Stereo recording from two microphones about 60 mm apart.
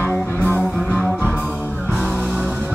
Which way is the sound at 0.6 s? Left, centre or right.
Centre.